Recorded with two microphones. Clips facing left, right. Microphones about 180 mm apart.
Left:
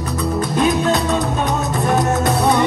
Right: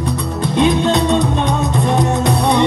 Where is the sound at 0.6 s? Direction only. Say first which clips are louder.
Right 4 dB; 5° left (ahead or behind).